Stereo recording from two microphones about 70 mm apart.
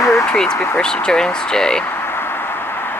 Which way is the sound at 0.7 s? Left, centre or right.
Centre.